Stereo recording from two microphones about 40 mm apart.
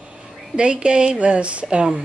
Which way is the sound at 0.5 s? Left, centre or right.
Right.